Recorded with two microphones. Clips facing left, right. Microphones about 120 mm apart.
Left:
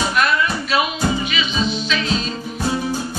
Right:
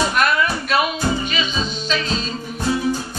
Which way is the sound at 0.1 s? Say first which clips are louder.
Even; 45° right (ahead or behind).